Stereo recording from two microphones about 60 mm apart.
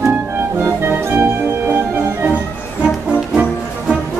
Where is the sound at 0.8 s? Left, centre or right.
Right.